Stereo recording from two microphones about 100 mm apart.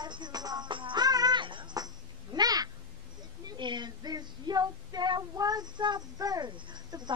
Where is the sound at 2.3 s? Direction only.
40° right (ahead or behind).